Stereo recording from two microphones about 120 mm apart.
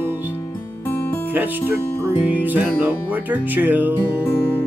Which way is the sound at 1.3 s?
15° right (ahead or behind).